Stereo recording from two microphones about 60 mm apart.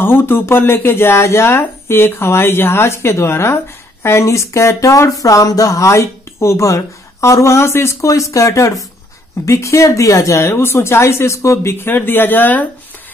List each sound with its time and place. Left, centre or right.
0.0 s speech: left
8.1 s speech: left
11.8 s speech: left